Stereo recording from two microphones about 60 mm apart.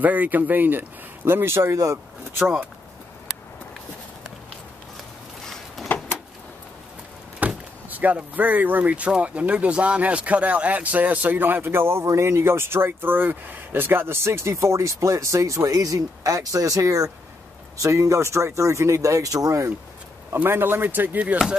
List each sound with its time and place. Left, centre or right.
0.0 s speech: right
5.9 s vehicle: left
7.3 s speech: right
17.7 s speech: right
20.4 s speech: right